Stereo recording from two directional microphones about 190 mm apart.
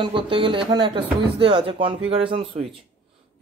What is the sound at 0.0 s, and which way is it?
Speech, 25° right (ahead or behind).